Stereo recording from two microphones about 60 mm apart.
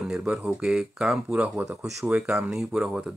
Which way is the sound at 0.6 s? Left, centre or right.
Centre.